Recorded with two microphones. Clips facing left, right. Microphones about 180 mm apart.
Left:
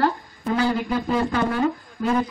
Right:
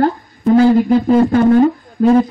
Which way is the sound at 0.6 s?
45° right (ahead or behind).